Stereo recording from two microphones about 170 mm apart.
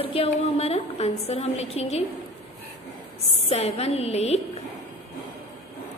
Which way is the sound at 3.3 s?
40° left (ahead or behind).